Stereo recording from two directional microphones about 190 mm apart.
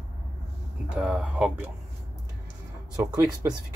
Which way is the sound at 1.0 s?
5° right (ahead or behind).